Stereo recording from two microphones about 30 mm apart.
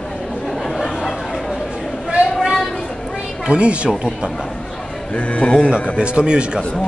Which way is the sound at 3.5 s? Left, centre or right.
Right.